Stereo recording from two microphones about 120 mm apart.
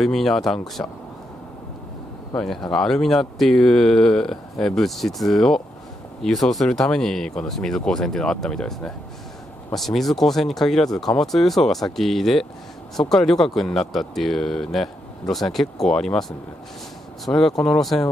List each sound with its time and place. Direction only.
0.0 s speech: centre (ahead or behind)
2.3 s speech: 5° left (ahead or behind)